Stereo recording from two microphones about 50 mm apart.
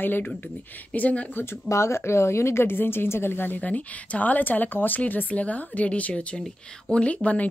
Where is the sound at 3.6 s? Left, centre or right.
Left.